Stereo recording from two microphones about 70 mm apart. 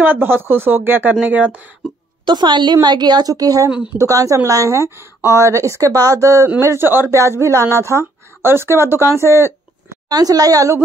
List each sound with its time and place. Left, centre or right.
0.0 s speech: right
2.2 s a woman's voice: right
10.0 s a woman's voice: right